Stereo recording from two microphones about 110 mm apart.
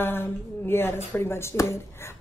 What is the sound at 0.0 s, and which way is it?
Speech, 20° left (ahead or behind).